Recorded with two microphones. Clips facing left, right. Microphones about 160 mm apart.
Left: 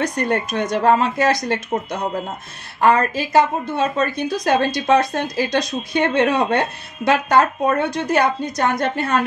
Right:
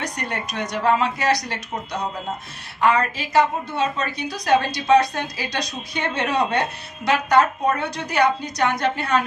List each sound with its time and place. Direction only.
0.0 s a woman's voice: 50° left (ahead or behind)